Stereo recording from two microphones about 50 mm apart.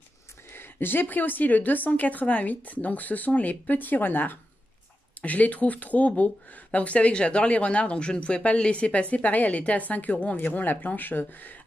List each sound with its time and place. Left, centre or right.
0.5 s a woman's voice: left
5.2 s a woman's voice: left